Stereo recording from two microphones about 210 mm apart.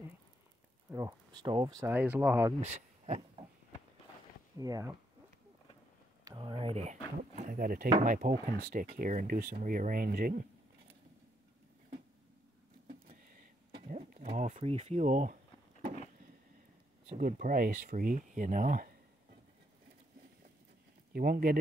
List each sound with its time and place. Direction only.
0.9 s speech: 20° right (ahead or behind)
2.6 s speech: 35° right (ahead or behind)
4.6 s speech: 15° right (ahead or behind)
6.2 s speech: 20° right (ahead or behind)
7.2 s speech: 40° right (ahead or behind)
13.8 s speech: 35° right (ahead or behind)
17.2 s speech: 40° right (ahead or behind)
21.1 s speech: 45° right (ahead or behind)